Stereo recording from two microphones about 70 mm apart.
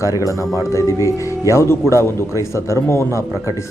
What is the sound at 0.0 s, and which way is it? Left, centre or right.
Speech, left.